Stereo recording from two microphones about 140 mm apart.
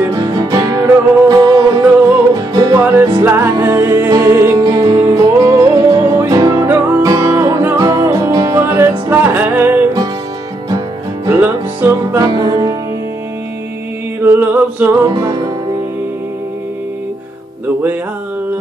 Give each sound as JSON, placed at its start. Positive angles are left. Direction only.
{"t": 0.0, "sound": "music", "side_deg": -25}
{"t": 11.2, "sound": "music", "side_deg": -15}
{"t": 12.2, "sound": "music", "side_deg": -30}
{"t": 14.2, "sound": "music", "side_deg": -15}